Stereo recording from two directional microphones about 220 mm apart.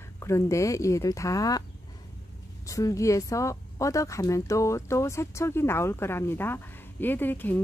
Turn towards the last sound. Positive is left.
turn(degrees=10)  # may be behind; listen again after turning